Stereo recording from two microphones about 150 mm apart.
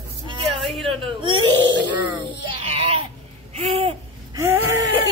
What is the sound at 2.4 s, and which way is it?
Baby cry, 40° right (ahead or behind).